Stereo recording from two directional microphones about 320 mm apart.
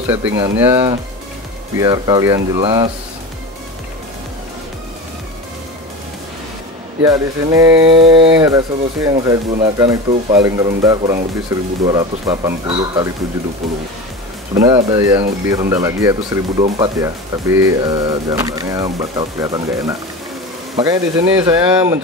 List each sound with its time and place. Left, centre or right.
0.1 s speech: centre
7.0 s speech: centre
14.5 s speech: centre